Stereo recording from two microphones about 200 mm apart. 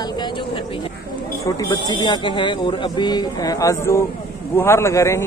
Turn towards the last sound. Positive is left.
turn(degrees=15)  # may be behind; listen again after turning